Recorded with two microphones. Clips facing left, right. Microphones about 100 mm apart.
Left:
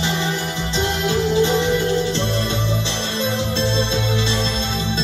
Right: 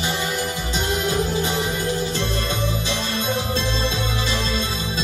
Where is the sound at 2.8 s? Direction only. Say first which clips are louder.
Left 1 dB; 30° left (ahead or behind).